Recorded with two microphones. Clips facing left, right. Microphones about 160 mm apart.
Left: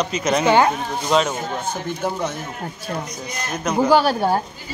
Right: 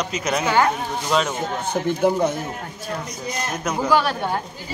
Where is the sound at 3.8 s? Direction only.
30° left (ahead or behind).